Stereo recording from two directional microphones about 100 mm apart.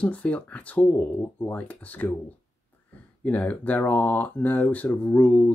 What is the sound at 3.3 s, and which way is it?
Speech, 15° left (ahead or behind).